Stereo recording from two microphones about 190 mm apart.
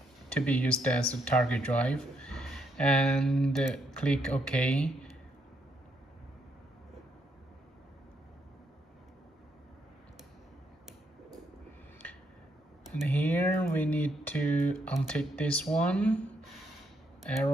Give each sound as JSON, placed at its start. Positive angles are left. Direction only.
{"t": 0.3, "sound": "speech", "side_deg": 5}
{"t": 13.1, "sound": "speech", "side_deg": 10}